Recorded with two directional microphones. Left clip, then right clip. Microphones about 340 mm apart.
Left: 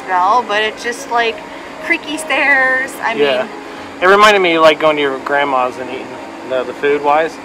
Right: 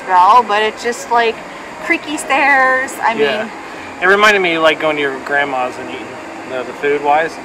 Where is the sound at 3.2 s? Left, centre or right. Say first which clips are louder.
Left 2 dB; centre.